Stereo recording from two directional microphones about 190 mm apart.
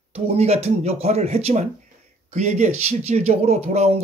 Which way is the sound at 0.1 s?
35° right (ahead or behind).